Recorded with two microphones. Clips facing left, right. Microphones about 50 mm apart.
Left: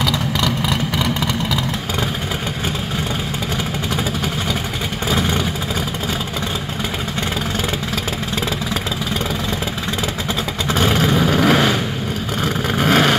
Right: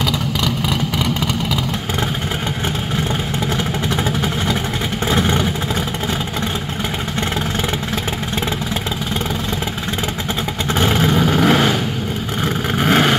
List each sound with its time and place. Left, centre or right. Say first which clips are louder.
0.9 s vehicle: even; centre
5.1 s vehicle: right 2 dB; right
10.9 s vehicle: right 1 dB; centre